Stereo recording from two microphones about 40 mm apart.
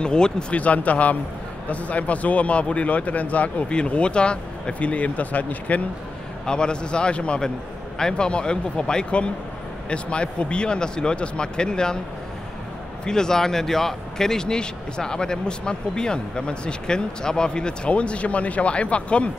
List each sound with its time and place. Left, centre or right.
0.0 s a man's voice: left
0.6 s speech: left
3.6 s speech: left
6.4 s a man's voice: left
13.0 s a man's voice: centre